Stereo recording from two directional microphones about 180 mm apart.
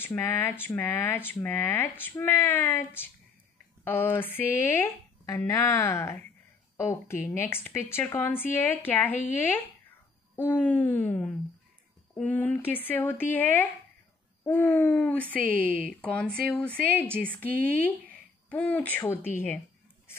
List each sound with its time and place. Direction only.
0.0 s speech: 10° left (ahead or behind)
15.3 s a woman's voice: 50° right (ahead or behind)
16.0 s speech: 5° left (ahead or behind)